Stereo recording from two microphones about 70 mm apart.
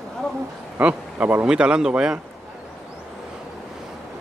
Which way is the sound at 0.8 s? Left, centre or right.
Right.